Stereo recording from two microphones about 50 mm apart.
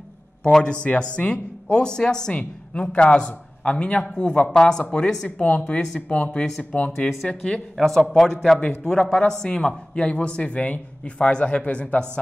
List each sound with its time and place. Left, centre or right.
0.4 s a man's voice: centre
0.8 s a woman's voice: left
5.4 s a woman's voice: left
7.2 s speech: centre
7.7 s a man's voice: centre
8.8 s a woman's voice: centre